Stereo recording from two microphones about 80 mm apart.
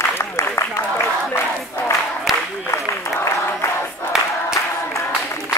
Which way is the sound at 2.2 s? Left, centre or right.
Centre.